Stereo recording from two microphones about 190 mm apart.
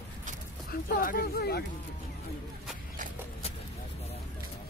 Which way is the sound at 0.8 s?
50° left (ahead or behind).